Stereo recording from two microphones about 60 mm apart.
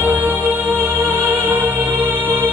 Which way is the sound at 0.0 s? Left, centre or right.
Right.